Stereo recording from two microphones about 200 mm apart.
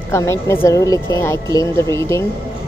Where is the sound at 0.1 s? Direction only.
15° left (ahead or behind).